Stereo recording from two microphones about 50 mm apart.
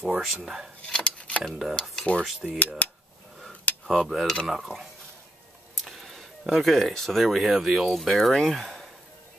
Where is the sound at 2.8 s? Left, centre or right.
Left.